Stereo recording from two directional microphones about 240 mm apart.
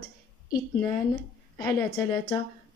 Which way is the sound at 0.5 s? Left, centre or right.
Centre.